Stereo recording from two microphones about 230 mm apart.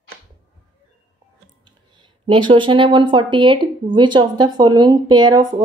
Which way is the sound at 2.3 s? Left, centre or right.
Right.